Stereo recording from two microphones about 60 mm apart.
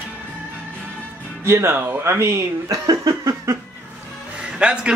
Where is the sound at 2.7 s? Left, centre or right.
Right.